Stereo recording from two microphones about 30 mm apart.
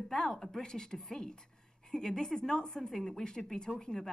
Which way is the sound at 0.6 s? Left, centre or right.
Left.